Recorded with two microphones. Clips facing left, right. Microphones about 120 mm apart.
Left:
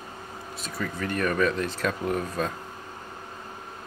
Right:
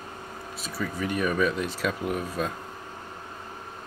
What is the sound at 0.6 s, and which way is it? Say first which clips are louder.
Speech: right 1 dB; 5° right (ahead or behind).